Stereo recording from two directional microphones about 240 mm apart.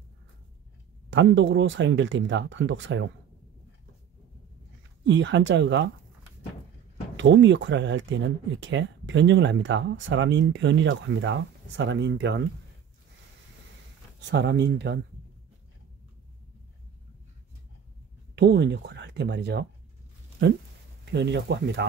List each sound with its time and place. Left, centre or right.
1.1 s speech: right
5.0 s speech: right
7.2 s speech: right
14.2 s speech: right
18.3 s speech: right
21.0 s speech: right